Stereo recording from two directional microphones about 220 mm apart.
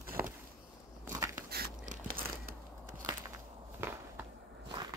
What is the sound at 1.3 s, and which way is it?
Biting, 35° right (ahead or behind).